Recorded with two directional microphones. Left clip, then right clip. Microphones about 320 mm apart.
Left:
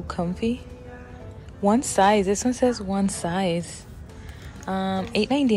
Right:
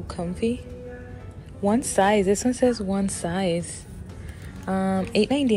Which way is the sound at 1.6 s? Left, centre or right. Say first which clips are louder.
Left 2 dB; centre.